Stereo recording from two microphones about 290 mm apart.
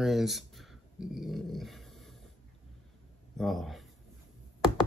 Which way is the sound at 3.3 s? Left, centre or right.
Centre.